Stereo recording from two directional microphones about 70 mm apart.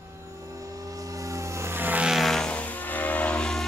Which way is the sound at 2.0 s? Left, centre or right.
Centre.